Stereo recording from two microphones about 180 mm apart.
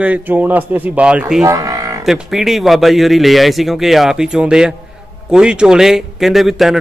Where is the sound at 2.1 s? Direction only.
Centre (ahead or behind).